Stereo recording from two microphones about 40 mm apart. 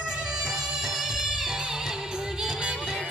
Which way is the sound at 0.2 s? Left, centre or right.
Centre.